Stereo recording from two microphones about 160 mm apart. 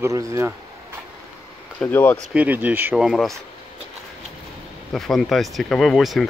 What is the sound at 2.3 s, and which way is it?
Speech, 10° right (ahead or behind).